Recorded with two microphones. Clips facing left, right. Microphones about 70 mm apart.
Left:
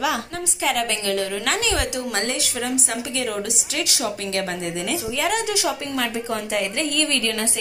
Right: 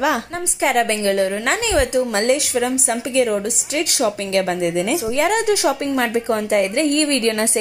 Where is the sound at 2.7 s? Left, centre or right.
Right.